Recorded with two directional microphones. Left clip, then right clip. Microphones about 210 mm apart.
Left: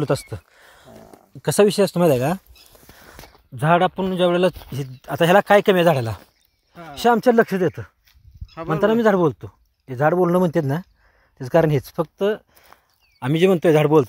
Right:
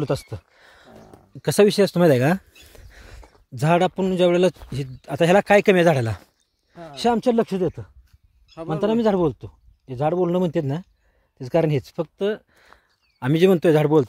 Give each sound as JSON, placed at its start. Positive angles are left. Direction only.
{"t": 0.0, "sound": "speech", "side_deg": 0}
{"t": 0.6, "sound": "a sound", "side_deg": -25}
{"t": 1.4, "sound": "speech", "side_deg": -25}
{"t": 3.5, "sound": "speech", "side_deg": -40}
{"t": 7.2, "sound": "speech", "side_deg": -5}
{"t": 8.5, "sound": "speech", "side_deg": 5}
{"t": 8.8, "sound": "speech", "side_deg": -10}